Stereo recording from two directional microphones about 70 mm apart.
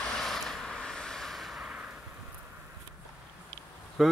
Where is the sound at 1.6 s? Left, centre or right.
Centre.